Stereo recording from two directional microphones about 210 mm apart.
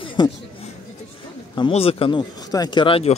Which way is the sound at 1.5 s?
25° left (ahead or behind).